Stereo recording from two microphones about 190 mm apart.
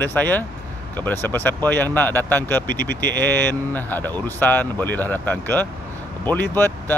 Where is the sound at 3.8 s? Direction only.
10° left (ahead or behind).